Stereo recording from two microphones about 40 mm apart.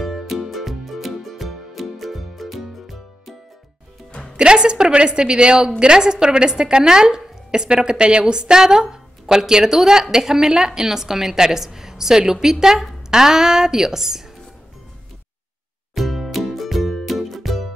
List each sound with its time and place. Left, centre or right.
0.0 s music: centre
4.4 s a woman's voice: right
15.9 s music: centre